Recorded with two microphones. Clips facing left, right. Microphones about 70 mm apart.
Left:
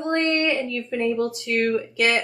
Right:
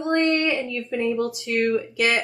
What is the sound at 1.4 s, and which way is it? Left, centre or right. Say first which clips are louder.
Speech: right 1 dB; left.